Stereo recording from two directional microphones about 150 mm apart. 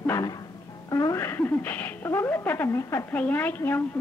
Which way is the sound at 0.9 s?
20° left (ahead or behind).